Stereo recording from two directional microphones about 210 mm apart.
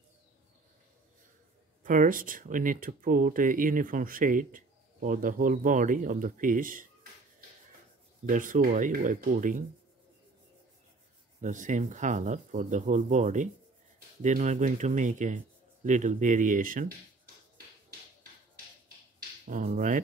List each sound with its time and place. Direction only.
1.8 s speech: 40° right (ahead or behind)
11.4 s speech: 35° right (ahead or behind)
19.1 s a sound: 40° right (ahead or behind)